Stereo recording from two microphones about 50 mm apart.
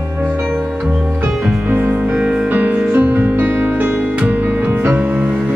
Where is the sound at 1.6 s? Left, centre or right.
Right.